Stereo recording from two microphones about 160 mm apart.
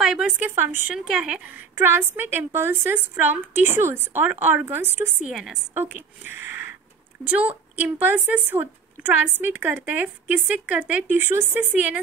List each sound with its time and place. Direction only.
0.0 s a woman's voice: 5° right (ahead or behind)
5.3 s a woman's voice: centre (ahead or behind)
5.8 s a woman's voice: 15° right (ahead or behind)